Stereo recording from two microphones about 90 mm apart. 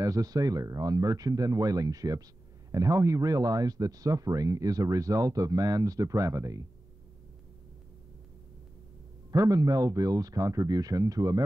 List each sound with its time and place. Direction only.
0.0 s speech: 40° right (ahead or behind)
9.3 s speech: 40° right (ahead or behind)